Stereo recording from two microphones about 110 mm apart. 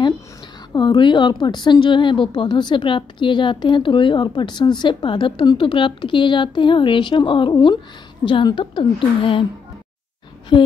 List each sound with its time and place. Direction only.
0.7 s a woman's voice: 45° left (ahead or behind)
10.5 s a woman's voice: 50° left (ahead or behind)